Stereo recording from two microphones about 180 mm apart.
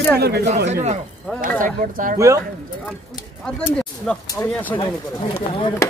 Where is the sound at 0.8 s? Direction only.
45° right (ahead or behind).